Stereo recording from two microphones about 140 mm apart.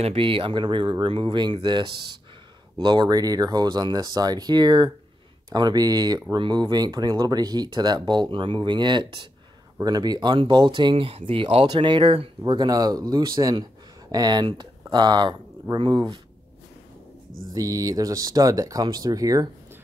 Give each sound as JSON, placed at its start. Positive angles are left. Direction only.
{"t": 0.0, "sound": "speech", "side_deg": -40}
{"t": 12.5, "sound": "speech", "side_deg": -25}
{"t": 17.6, "sound": "speech", "side_deg": -25}